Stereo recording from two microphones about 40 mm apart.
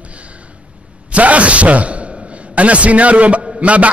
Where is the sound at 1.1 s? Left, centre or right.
Right.